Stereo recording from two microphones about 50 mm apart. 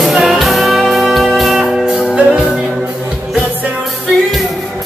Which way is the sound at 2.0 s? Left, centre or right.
Right.